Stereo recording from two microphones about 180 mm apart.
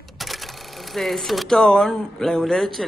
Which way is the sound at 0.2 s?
Centre (ahead or behind).